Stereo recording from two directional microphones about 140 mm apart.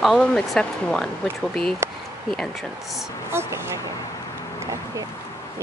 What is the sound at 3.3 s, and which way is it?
Speech, 20° right (ahead or behind).